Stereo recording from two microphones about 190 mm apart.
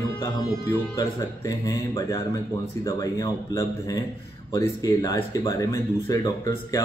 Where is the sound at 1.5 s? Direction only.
20° left (ahead or behind).